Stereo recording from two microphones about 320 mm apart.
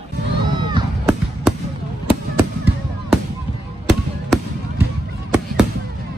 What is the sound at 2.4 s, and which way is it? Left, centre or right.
Fireworks, centre.